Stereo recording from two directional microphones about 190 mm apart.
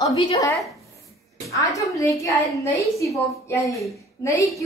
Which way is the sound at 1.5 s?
15° left (ahead or behind).